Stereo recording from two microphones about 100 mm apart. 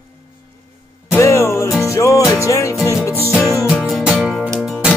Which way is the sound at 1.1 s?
30° left (ahead or behind).